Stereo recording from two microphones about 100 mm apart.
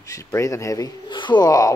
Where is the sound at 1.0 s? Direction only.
50° left (ahead or behind).